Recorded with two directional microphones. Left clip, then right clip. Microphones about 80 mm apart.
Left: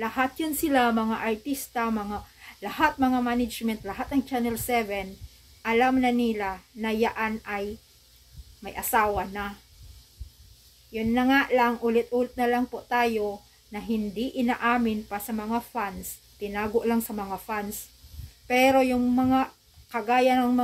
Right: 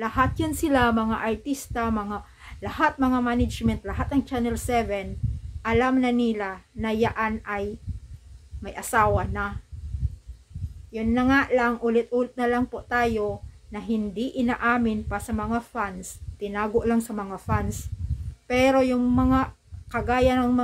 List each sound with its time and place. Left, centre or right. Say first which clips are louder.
0.0 s speech: right 3 dB; right
8.6 s speech: right 2 dB; right
10.9 s speech: right 1 dB; right